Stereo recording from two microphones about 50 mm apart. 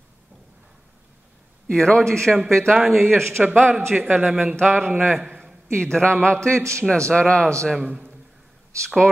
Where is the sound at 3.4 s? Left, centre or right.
Right.